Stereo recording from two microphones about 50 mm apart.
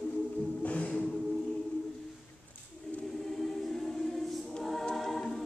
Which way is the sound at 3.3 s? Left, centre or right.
Centre.